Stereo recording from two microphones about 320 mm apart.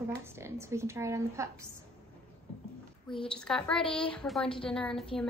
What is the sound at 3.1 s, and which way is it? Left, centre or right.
A woman's voice, centre.